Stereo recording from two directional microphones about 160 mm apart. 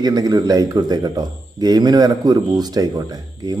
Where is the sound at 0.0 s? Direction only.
25° right (ahead or behind).